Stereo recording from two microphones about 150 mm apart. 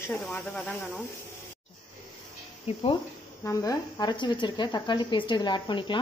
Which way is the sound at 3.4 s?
20° left (ahead or behind).